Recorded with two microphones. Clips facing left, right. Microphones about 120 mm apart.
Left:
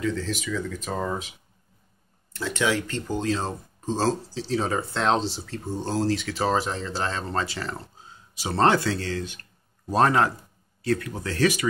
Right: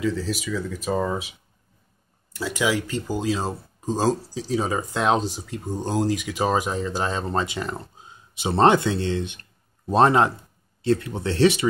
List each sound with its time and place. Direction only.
0.0 s speech: 5° right (ahead or behind)
2.3 s speech: 10° right (ahead or behind); by 11.6 s 25° right (ahead or behind)